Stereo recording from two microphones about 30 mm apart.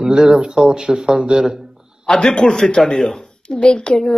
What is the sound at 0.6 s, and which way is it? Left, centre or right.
Speech, centre.